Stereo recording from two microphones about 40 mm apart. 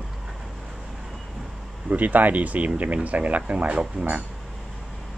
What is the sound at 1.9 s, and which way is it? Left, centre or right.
Speech, right.